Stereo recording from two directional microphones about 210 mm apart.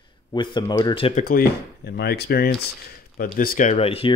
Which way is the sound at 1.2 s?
45° left (ahead or behind).